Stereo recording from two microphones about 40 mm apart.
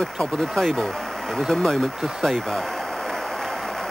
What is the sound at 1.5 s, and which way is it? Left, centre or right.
Speech, centre.